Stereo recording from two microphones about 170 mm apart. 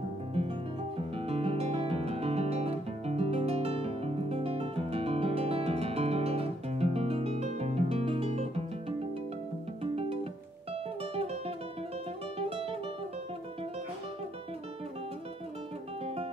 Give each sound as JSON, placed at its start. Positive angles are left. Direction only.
{"t": 0.9, "sound": "guitar", "side_deg": -35}
{"t": 12.4, "sound": "music", "side_deg": -35}